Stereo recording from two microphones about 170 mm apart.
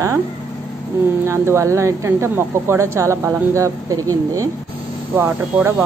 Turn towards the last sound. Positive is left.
turn(degrees=-15)  # may be behind; listen again after turning